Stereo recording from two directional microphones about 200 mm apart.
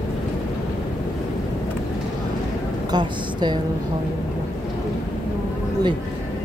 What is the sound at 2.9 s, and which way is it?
Speech, 20° right (ahead or behind).